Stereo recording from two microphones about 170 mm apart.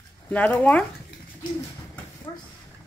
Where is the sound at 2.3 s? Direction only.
25° left (ahead or behind).